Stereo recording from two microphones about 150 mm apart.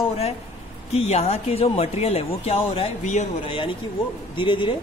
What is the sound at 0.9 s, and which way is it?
Speech, 45° left (ahead or behind).